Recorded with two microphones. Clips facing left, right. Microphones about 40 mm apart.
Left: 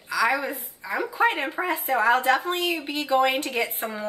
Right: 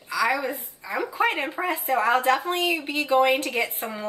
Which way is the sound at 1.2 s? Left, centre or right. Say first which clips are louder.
Left 1 dB; centre.